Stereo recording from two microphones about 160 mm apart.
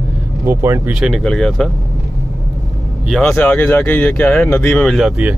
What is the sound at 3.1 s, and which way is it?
Speech, 5° left (ahead or behind).